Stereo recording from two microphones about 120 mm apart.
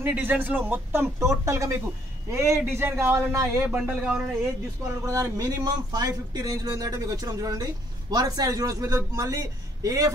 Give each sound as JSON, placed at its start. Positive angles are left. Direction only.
{"t": 0.0, "sound": "speech", "side_deg": -15}
{"t": 3.6, "sound": "speech", "side_deg": -10}
{"t": 5.0, "sound": "speech", "side_deg": -25}